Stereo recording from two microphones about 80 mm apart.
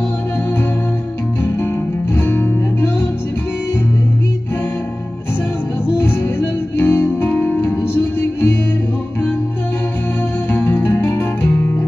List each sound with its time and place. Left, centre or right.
2.1 s music: left
5.9 s music: left
10.5 s music: left